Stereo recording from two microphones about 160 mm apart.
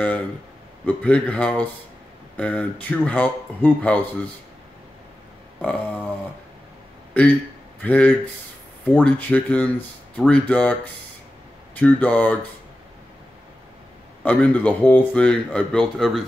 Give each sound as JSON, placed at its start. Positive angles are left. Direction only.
{"t": 0.8, "sound": "speech", "side_deg": 10}
{"t": 5.6, "sound": "speech", "side_deg": 10}
{"t": 7.2, "sound": "speech", "side_deg": 10}
{"t": 14.2, "sound": "speech", "side_deg": 10}